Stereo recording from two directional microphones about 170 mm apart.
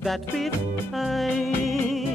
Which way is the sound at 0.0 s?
Centre (ahead or behind).